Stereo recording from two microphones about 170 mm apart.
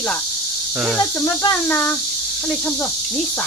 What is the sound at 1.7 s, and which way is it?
Cricket, 10° left (ahead or behind).